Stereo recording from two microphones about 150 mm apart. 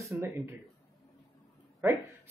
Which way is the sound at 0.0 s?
15° right (ahead or behind).